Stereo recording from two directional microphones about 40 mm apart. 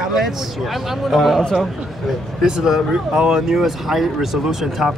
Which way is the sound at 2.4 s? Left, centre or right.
Centre.